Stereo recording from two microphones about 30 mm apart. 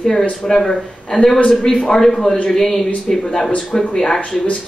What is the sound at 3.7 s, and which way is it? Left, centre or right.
Speech, left.